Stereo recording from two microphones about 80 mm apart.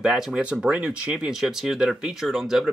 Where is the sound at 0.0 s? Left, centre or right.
Centre.